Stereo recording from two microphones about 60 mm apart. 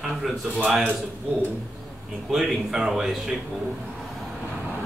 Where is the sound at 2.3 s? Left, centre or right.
Centre.